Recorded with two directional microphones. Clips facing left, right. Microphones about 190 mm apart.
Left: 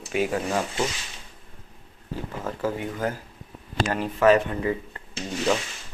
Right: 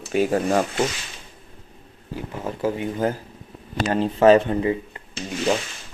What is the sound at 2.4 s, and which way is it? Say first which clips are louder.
Speech: right 4 dB; 15° right (ahead or behind).